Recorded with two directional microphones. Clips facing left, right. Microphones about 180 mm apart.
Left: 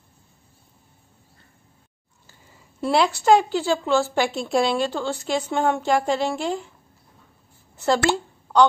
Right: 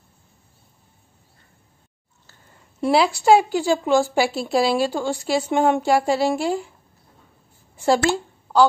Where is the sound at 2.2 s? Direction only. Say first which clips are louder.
Even; 5° left (ahead or behind).